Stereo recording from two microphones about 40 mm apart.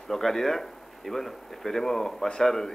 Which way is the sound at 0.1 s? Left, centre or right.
Centre.